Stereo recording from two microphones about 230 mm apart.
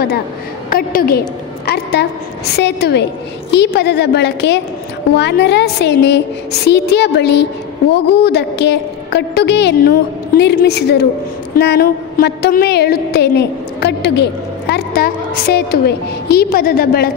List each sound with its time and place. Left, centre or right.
0.7 s a woman's voice: left